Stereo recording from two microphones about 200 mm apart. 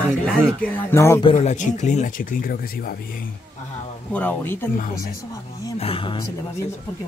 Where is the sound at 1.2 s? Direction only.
30° left (ahead or behind); by 3.0 s 50° left (ahead or behind).